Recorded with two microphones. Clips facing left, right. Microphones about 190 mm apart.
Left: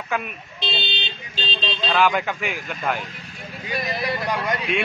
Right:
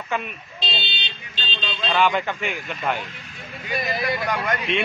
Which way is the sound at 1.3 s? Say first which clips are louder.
Left 4 dB; 40° left (ahead or behind).